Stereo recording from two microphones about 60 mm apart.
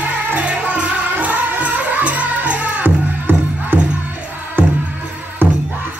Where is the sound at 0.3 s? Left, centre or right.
Right.